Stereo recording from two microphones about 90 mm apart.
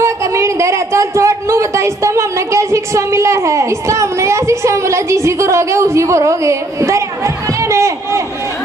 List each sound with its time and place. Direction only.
0.0 s speech: 35° right (ahead or behind)